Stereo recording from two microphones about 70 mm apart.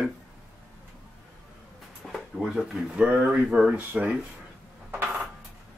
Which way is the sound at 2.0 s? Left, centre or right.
Centre.